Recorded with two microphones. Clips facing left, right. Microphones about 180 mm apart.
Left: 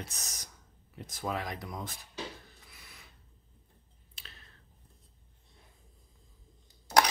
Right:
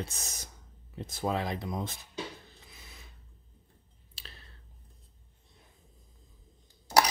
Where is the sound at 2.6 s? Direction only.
25° right (ahead or behind).